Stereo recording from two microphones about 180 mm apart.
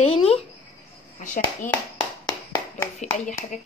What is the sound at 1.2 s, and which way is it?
Speech, 45° left (ahead or behind).